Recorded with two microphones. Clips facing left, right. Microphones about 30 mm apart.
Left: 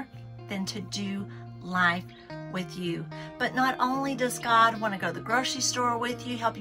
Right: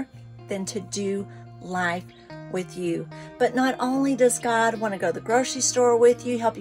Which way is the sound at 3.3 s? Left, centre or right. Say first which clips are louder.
Right 4 dB; left.